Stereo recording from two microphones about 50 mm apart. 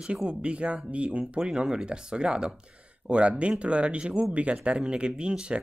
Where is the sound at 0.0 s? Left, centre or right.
Centre.